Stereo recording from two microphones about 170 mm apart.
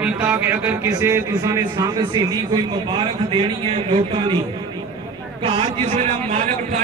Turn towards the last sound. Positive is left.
turn(degrees=-45)  # may be behind; listen again after turning